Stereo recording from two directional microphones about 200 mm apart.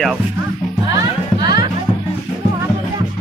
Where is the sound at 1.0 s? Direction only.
20° right (ahead or behind).